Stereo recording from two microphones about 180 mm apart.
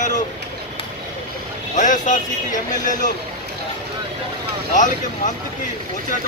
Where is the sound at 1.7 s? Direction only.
45° left (ahead or behind).